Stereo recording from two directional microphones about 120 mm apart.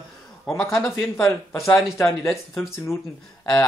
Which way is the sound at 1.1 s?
10° left (ahead or behind).